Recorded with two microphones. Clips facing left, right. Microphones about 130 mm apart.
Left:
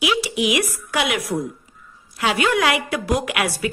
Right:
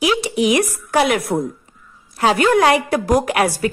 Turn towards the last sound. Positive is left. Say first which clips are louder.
# right 6 dB
turn(degrees=-40)  # may be behind; listen again after turning